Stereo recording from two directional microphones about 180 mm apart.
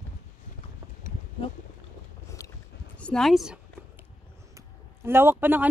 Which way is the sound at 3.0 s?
5° left (ahead or behind).